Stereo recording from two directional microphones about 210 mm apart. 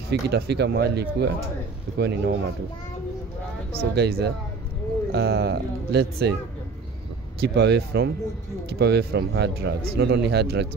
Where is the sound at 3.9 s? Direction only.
50° right (ahead or behind).